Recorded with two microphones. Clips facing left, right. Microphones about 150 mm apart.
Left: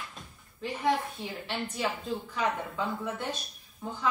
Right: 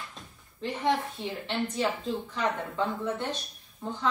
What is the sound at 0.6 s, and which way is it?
Speech, 5° left (ahead or behind).